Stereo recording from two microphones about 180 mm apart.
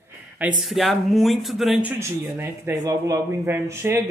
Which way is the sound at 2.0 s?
15° right (ahead or behind).